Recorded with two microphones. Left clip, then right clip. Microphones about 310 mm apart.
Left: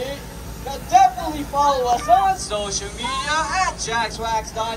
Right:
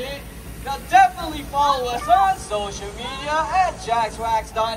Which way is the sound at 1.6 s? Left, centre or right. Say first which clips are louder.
Left 2 dB; right.